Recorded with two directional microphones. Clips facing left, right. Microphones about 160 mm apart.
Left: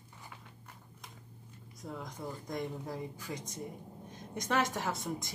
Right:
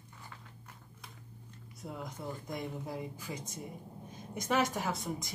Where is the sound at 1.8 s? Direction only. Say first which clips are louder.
Even; 5° right (ahead or behind).